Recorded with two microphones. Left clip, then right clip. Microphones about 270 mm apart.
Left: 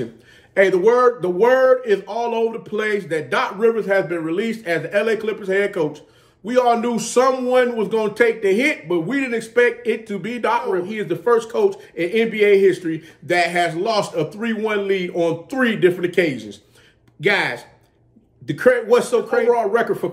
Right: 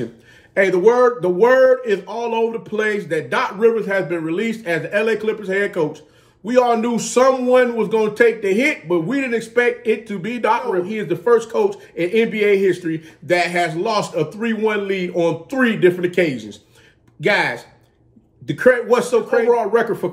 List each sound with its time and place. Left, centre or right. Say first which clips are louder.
0.6 s a man's voice: right 1 dB; centre